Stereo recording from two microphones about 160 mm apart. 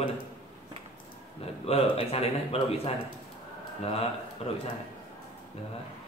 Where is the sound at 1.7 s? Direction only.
40° left (ahead or behind).